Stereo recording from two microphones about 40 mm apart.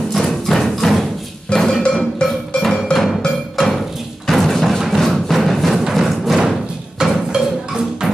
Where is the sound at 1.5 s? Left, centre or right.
Centre.